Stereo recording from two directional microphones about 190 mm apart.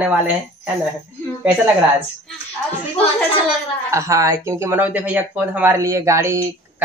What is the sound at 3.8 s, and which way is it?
Speech, 15° right (ahead or behind).